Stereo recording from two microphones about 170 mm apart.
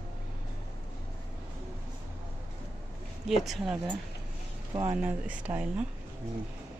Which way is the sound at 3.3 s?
Centre (ahead or behind).